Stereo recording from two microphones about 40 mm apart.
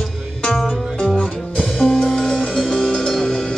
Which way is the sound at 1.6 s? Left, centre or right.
Centre.